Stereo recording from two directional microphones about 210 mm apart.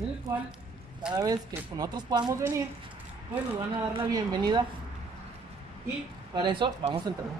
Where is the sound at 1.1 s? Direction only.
20° right (ahead or behind).